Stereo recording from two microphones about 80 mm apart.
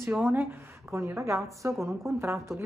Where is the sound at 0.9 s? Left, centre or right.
Right.